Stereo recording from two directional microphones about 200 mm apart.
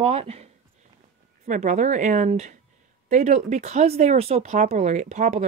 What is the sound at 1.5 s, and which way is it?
Speech, 35° right (ahead or behind).